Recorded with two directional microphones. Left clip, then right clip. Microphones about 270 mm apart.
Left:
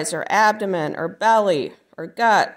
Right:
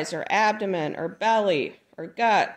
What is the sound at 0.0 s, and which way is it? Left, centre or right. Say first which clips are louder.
Speech: left 5 dB; left.